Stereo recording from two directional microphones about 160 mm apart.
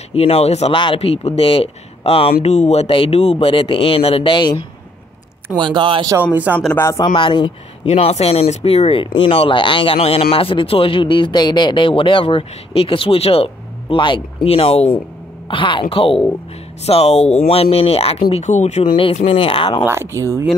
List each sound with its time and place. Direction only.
0.1 s speech: 40° left (ahead or behind)
5.6 s speech: 30° right (ahead or behind)
6.3 s speech: 10° right (ahead or behind)
6.8 s speech: 20° left (ahead or behind)
7.2 s speech: 30° left (ahead or behind); by 18.9 s 45° left (ahead or behind)
18.9 s speech: 35° left (ahead or behind)
19.9 s speech: 15° right (ahead or behind)